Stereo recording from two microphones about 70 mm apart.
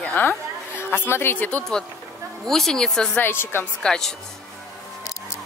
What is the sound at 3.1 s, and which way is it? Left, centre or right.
Speech, left.